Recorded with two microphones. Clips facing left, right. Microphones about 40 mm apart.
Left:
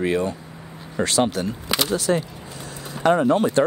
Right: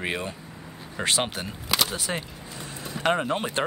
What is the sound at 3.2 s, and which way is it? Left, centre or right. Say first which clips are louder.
Speech: left 9 dB; right.